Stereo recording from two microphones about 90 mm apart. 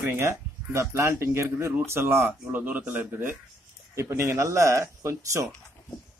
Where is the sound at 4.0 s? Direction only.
30° right (ahead or behind).